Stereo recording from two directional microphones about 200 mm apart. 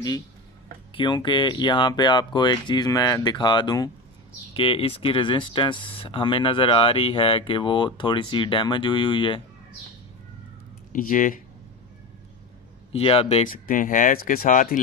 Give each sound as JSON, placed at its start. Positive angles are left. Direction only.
{"t": 0.9, "sound": "speech", "side_deg": 20}
{"t": 10.9, "sound": "speech", "side_deg": 40}
{"t": 12.9, "sound": "speech", "side_deg": 30}